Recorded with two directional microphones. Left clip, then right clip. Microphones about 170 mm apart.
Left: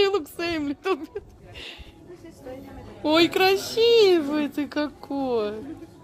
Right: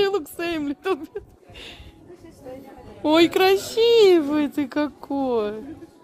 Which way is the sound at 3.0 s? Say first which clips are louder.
Right 2 dB; 40° right (ahead or behind).